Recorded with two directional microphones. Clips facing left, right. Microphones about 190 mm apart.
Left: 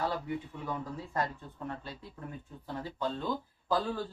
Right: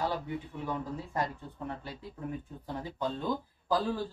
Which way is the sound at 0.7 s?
15° right (ahead or behind).